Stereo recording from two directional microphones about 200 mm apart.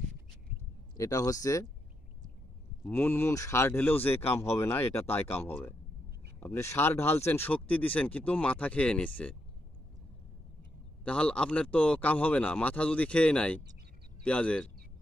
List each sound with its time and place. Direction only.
0.9 s speech: 15° left (ahead or behind)
2.8 s speech: 10° left (ahead or behind)
11.1 s speech: 5° left (ahead or behind)